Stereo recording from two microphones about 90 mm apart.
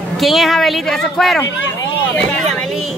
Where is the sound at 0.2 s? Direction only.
Centre (ahead or behind).